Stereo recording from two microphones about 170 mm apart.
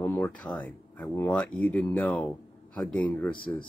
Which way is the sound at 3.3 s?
30° left (ahead or behind).